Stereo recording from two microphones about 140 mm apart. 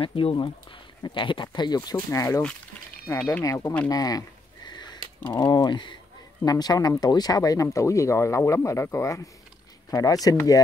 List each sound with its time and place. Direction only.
0.0 s speech: 40° left (ahead or behind)
4.6 s sniff: 30° left (ahead or behind)
5.3 s speech: 30° left (ahead or behind)